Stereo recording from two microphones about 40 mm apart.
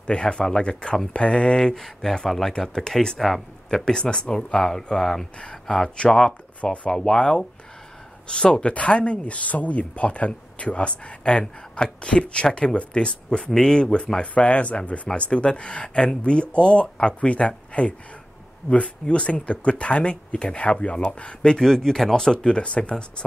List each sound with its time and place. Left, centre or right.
0.0 s speech: left
1.8 s speech: centre
3.2 s speech: centre
3.8 s speech: centre
5.4 s speech: left
6.0 s speech: centre
6.6 s speech: left
6.9 s speech: centre
14.2 s speech: left
21.5 s speech: centre